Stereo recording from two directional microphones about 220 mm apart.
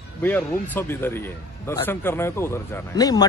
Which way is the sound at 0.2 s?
10° left (ahead or behind).